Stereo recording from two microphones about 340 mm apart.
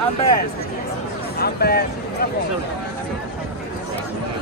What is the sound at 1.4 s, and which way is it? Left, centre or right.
Speech, left.